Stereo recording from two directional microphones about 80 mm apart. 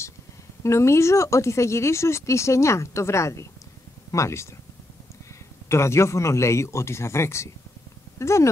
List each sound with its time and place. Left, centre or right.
0.7 s speech: left
5.7 s speech: left